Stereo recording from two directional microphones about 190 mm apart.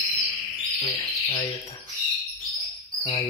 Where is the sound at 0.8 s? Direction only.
30° left (ahead or behind).